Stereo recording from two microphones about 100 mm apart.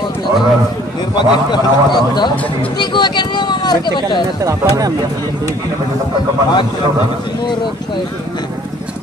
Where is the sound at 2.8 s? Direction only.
50° left (ahead or behind).